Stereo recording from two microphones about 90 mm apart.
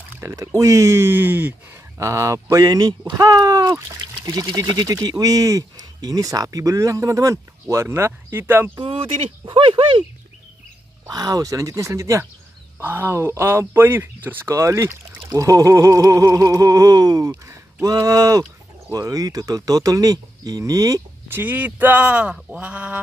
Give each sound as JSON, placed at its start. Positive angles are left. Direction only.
{"t": 0.2, "sound": "speech", "side_deg": -30}
{"t": 2.0, "sound": "speech", "side_deg": -35}
{"t": 2.5, "sound": "speech", "side_deg": -45}
{"t": 8.8, "sound": "speech", "side_deg": -85}
{"t": 11.1, "sound": "speech", "side_deg": -45}
{"t": 17.3, "sound": "speech", "side_deg": -30}
{"t": 17.8, "sound": "speech", "side_deg": -45}
{"t": 21.3, "sound": "speech", "side_deg": -20}